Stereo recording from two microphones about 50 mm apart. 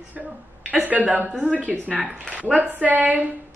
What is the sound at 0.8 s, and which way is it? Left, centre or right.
Speech, right.